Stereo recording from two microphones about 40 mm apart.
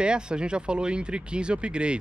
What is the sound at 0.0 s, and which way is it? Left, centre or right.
Speech, right.